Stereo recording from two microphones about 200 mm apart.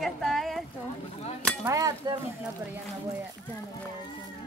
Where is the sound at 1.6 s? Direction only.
15° right (ahead or behind).